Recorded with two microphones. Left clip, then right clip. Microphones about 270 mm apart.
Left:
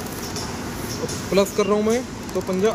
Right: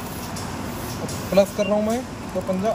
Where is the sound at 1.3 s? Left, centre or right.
Centre.